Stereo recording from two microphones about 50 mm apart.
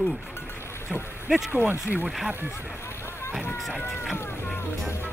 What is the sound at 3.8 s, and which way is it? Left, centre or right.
Speech, left.